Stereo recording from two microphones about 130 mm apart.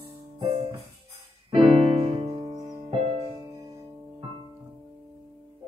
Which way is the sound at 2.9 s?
50° right (ahead or behind).